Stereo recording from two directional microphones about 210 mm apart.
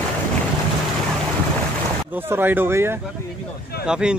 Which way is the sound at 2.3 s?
10° right (ahead or behind).